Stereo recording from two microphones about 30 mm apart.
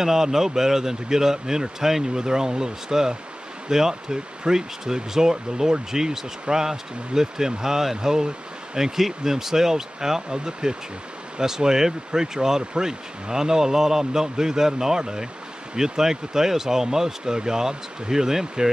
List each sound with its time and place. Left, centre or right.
0.0 s speech: centre